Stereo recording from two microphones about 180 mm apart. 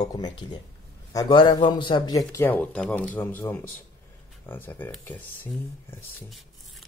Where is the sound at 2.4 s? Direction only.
10° left (ahead or behind).